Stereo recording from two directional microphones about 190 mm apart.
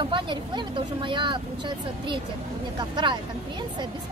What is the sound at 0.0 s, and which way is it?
Speech, 25° right (ahead or behind).